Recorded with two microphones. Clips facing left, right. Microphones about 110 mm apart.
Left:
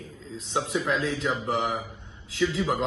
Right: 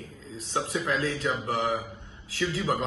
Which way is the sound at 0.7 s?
Centre (ahead or behind).